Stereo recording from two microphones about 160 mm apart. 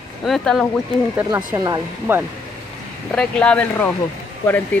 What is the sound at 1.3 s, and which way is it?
Speech, 20° right (ahead or behind).